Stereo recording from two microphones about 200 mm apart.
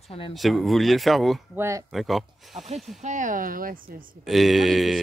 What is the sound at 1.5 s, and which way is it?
Speech, 15° right (ahead or behind).